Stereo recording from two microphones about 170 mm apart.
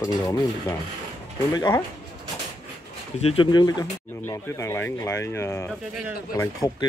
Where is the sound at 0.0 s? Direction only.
20° left (ahead or behind).